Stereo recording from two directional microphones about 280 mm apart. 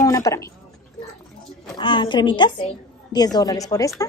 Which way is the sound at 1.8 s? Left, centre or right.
Centre.